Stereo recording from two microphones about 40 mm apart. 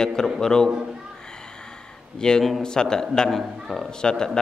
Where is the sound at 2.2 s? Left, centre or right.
Centre.